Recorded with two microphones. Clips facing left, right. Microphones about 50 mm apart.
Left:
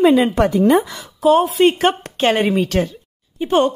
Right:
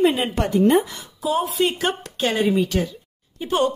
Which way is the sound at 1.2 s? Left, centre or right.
Left.